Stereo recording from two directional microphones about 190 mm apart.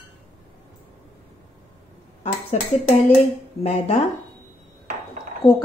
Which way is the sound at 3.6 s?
35° left (ahead or behind).